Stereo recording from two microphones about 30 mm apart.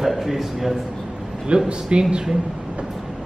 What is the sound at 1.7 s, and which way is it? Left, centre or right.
Speech, right.